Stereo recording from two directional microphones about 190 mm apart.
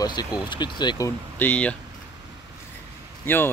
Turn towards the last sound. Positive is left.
turn(degrees=10)  # may be behind; listen again after turning